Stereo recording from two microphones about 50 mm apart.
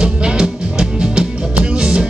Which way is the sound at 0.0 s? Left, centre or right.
Centre.